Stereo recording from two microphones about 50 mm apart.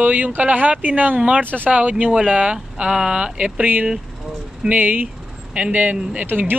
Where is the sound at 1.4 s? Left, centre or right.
Right.